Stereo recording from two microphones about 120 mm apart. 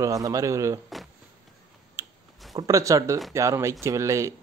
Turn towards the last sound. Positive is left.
turn(degrees=-25)  # may be behind; listen again after turning